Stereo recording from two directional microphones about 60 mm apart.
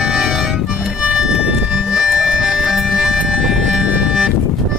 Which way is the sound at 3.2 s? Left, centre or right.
Centre.